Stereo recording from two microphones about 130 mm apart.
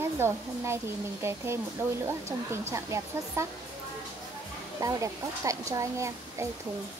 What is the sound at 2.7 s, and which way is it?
Speech, 20° right (ahead or behind).